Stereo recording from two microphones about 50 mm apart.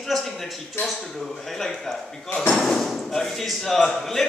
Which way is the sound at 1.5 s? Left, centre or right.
Centre.